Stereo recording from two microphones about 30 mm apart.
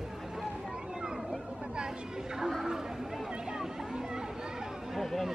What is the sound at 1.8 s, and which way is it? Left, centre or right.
Speech, right.